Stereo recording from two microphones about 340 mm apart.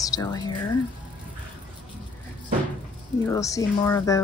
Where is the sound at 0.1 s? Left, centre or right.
Centre.